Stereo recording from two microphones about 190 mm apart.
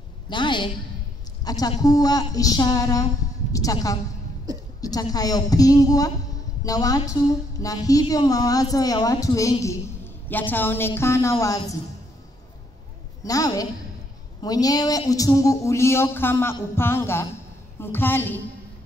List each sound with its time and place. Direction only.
0.3 s a woman's voice: 25° left (ahead or behind)
13.2 s a woman's voice: 20° left (ahead or behind)